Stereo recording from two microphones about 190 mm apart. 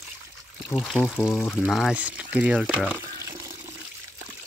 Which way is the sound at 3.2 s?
15° right (ahead or behind).